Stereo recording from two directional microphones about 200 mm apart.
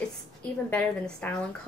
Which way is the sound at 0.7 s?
5° left (ahead or behind).